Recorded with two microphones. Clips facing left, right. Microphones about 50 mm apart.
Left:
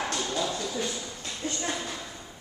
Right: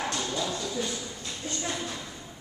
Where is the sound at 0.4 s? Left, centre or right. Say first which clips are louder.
Left 1 dB; centre.